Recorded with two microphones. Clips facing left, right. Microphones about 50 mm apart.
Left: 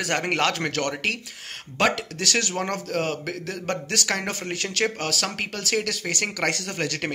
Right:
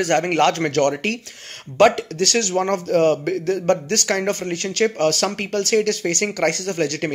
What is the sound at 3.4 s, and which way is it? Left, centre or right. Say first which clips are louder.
Speech: right 10 dB; centre.